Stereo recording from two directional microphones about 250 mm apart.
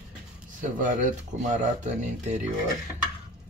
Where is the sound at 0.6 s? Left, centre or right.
Right.